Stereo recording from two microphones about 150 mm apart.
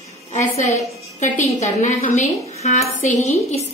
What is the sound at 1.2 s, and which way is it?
A woman's voice, 55° left (ahead or behind).